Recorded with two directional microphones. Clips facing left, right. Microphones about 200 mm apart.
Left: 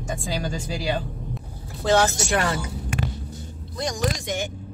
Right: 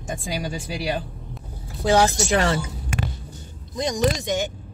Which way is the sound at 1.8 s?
15° right (ahead or behind).